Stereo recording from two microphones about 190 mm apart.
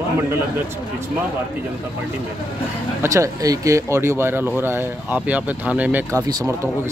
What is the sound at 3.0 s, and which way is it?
Speech, 15° right (ahead or behind).